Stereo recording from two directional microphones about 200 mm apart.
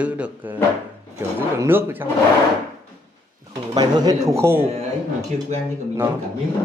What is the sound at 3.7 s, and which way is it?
Speech, 20° right (ahead or behind).